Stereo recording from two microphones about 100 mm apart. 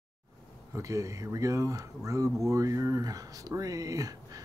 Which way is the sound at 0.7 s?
30° right (ahead or behind).